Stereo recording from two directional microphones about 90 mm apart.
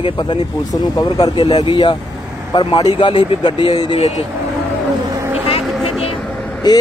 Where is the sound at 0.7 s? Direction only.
45° left (ahead or behind).